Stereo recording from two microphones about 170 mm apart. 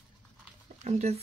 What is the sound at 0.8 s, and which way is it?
Speech, 40° right (ahead or behind).